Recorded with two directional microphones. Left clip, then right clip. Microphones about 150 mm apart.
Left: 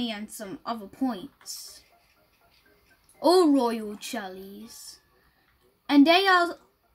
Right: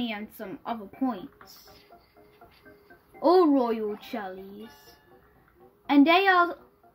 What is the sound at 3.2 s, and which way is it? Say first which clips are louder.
A woman's voice: even; 40° left (ahead or behind).